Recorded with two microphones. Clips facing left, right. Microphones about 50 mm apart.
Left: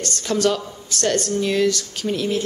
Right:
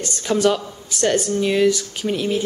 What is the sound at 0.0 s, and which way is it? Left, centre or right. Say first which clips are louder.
Speech: right 2 dB; centre.